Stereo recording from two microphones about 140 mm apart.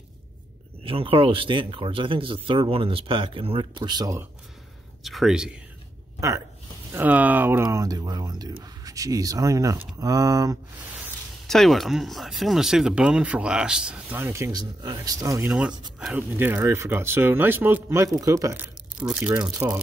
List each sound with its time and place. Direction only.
0.8 s speech: 40° right (ahead or behind)
5.0 s speech: centre (ahead or behind)
6.9 s speech: 15° right (ahead or behind)
11.4 s speech: centre (ahead or behind); by 15.4 s 25° right (ahead or behind)
15.4 s speech: 5° right (ahead or behind)